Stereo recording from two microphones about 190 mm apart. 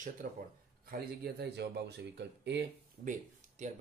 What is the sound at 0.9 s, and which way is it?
A man's voice, 60° right (ahead or behind).